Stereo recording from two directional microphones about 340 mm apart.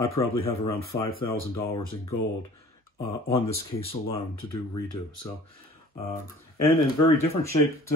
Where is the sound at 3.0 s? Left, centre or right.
Centre.